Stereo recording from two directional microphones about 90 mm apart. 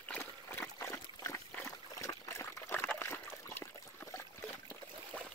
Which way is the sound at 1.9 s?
35° left (ahead or behind).